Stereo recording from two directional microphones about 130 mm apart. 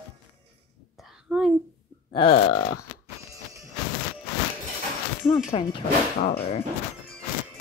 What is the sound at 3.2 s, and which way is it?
Music, 25° right (ahead or behind).